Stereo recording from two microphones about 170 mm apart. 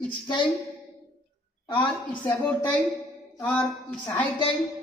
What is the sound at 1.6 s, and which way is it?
Speech, 25° left (ahead or behind).